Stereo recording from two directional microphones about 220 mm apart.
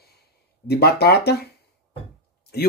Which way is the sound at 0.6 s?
45° left (ahead or behind).